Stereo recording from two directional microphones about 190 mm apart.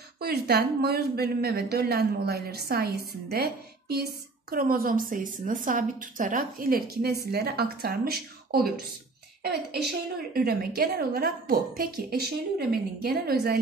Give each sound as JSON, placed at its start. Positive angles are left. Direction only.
{"t": 0.2, "sound": "a woman's voice", "side_deg": -55}